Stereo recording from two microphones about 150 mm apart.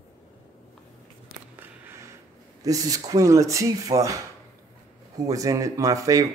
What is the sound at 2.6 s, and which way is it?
Speech, 25° right (ahead or behind).